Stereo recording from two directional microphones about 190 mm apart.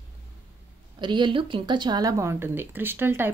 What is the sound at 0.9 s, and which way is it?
A woman's voice, 25° right (ahead or behind).